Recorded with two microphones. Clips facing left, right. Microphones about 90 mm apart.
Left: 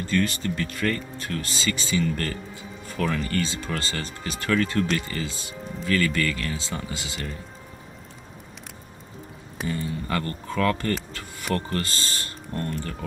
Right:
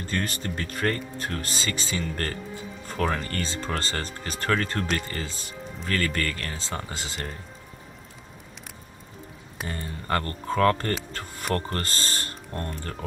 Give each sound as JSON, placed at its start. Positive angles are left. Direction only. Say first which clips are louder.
{"t": 0.1, "sound": "speech", "louder": "left 5 dB", "side_deg": -40}
{"t": 9.7, "sound": "speech", "louder": "left 1 dB", "side_deg": -45}